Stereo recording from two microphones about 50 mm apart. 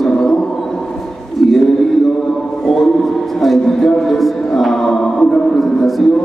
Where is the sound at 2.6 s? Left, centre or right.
Centre.